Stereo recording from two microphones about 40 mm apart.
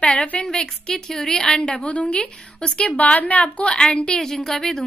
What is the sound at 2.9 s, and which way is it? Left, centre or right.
Speech, left.